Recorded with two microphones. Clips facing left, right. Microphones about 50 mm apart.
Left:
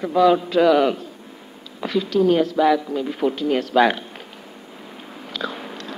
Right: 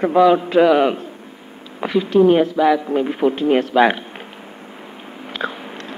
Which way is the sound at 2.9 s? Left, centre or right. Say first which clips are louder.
Right 5 dB; right.